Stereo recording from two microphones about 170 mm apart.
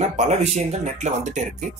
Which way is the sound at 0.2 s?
40° right (ahead or behind).